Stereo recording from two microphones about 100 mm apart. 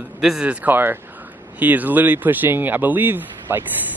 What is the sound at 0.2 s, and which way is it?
Speech, 5° right (ahead or behind).